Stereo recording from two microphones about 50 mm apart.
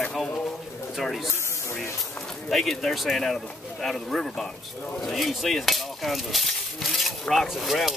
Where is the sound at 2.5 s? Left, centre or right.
Centre.